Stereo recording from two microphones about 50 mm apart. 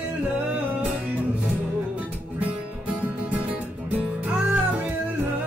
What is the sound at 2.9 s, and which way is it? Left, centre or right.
Music, right.